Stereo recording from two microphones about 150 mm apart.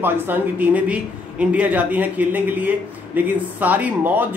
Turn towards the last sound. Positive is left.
turn(degrees=-10)  # may be behind; listen again after turning